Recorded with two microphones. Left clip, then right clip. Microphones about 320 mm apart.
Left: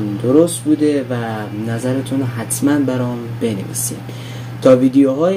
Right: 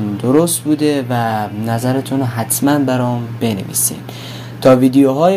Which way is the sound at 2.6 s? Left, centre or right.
Right.